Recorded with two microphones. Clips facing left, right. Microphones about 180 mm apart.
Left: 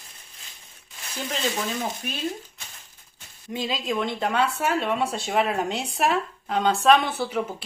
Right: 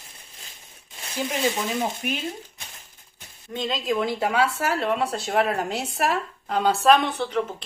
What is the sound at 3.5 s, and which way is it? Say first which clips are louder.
Speech: right 2 dB; 5° left (ahead or behind).